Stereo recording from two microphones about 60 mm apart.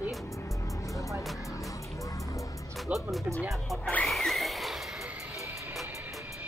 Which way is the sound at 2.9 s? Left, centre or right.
Right.